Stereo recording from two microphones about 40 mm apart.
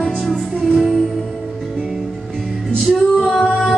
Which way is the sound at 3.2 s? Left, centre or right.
Centre.